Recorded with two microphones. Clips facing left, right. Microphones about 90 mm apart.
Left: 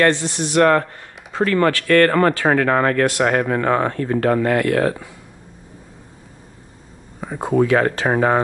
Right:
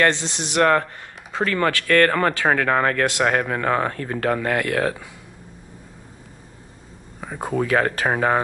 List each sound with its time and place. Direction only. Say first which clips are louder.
0.1 s speech: left 5 dB; 20° right (ahead or behind)
0.6 s speech: left 3 dB; 45° left (ahead or behind)
3.2 s speech: left 3 dB; 25° left (ahead or behind)
3.5 s speech: left 3 dB; 15° left (ahead or behind)
4.2 s speech: left 4 dB; 30° left (ahead or behind)
7.2 s speech: left 6 dB; 15° left (ahead or behind)